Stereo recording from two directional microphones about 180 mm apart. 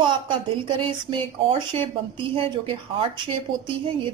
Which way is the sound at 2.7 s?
30° right (ahead or behind).